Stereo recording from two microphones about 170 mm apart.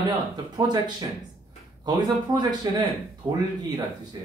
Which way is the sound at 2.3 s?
25° right (ahead or behind).